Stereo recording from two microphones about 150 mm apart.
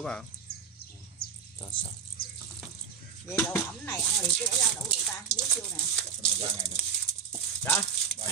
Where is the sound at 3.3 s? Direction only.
15° left (ahead or behind).